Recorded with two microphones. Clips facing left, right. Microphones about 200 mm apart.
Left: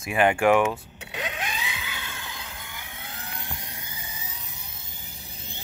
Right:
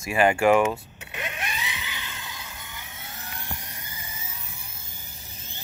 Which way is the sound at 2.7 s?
15° left (ahead or behind).